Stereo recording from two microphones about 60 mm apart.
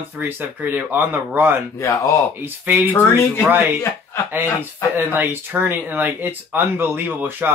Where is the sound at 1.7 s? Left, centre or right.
Left.